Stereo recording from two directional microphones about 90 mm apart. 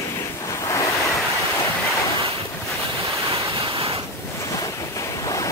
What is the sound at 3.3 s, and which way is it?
Waves, 80° right.